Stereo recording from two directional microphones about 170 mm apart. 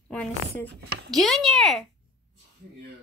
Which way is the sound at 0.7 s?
90° right.